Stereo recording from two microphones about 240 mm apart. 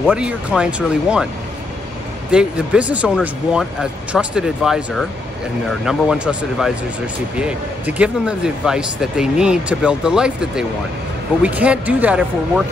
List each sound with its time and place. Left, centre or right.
0.0 s speech: centre
2.3 s speech: centre